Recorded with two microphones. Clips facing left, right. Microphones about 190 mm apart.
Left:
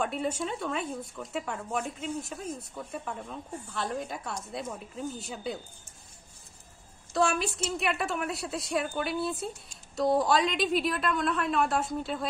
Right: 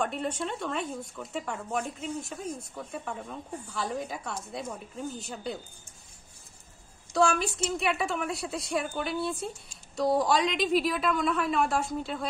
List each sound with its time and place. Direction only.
0.0 s speech: 5° left (ahead or behind)
7.2 s speech: centre (ahead or behind)